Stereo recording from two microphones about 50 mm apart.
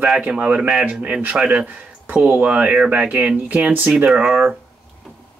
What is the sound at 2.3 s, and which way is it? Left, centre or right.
Speech, right.